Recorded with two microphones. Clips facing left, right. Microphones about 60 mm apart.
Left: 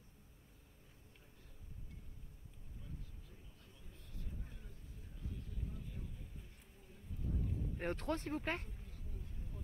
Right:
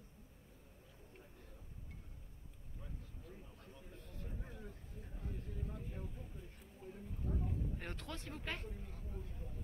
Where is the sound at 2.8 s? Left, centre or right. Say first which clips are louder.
Right 1 dB; right.